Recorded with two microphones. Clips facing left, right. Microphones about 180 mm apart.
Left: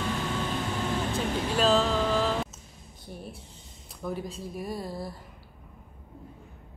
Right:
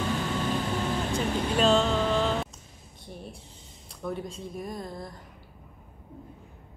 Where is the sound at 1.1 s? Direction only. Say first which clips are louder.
Right 1 dB; centre (ahead or behind).